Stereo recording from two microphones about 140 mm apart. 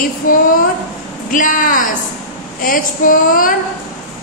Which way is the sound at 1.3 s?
70° left (ahead or behind).